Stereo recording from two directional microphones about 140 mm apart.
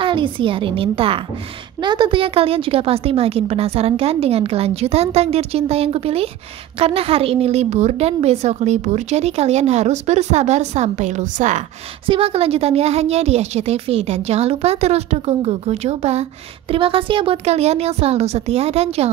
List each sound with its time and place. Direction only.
0.0 s a woman's voice: 35° right (ahead or behind); by 11.6 s 60° right (ahead or behind)
12.1 s speech: 45° right (ahead or behind)